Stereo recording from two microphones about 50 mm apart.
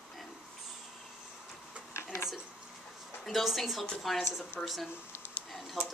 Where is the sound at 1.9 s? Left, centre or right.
Left.